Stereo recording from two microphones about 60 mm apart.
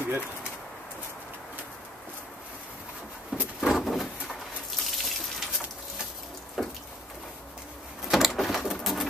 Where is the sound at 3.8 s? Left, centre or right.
Centre.